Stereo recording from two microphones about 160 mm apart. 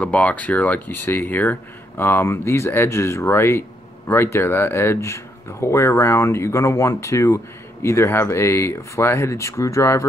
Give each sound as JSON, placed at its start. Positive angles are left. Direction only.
{"t": 0.0, "sound": "speech", "side_deg": 10}